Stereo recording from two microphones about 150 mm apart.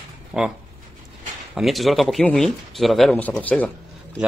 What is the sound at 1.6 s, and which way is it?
Speech, centre (ahead or behind).